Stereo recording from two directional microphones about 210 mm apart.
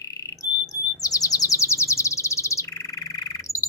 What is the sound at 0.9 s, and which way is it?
Chirp, 15° left (ahead or behind).